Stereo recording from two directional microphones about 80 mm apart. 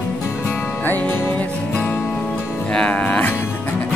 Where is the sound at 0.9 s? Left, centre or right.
Left.